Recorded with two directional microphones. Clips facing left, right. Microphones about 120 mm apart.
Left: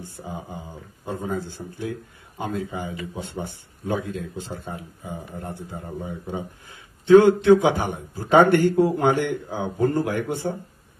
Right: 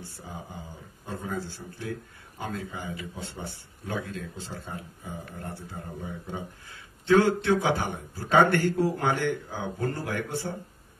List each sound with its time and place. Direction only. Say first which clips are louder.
0.0 s a man's voice: left 6 dB; 15° left (ahead or behind)